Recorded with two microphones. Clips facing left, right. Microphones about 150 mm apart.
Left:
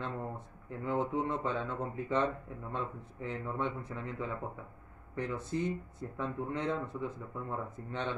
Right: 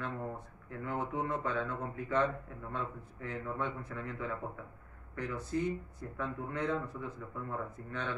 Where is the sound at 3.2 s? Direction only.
20° left (ahead or behind).